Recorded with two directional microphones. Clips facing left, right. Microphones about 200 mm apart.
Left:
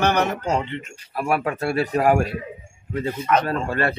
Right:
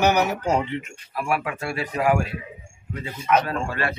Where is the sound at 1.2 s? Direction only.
40° left (ahead or behind).